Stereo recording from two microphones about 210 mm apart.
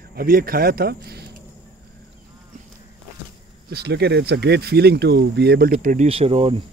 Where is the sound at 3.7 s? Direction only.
50° right (ahead or behind).